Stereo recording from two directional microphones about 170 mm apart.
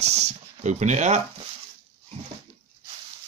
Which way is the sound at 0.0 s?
40° right (ahead or behind).